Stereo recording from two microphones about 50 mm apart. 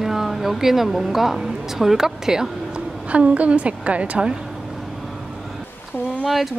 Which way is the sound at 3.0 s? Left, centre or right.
Right.